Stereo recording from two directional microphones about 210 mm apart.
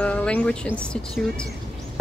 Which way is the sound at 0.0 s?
5° left (ahead or behind).